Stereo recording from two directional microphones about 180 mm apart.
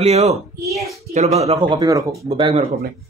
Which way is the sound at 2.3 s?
30° right (ahead or behind).